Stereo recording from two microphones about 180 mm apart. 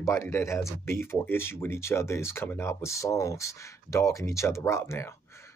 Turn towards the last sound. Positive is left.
turn(degrees=15)  # may be behind; listen again after turning